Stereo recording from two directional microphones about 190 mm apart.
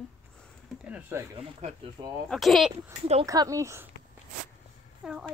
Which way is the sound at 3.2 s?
20° right (ahead or behind).